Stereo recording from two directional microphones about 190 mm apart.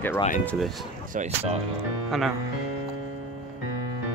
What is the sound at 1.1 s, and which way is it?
Speech, 35° right (ahead or behind).